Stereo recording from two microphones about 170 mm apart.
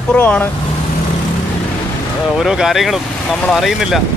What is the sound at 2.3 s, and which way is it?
Speech, 5° right (ahead or behind).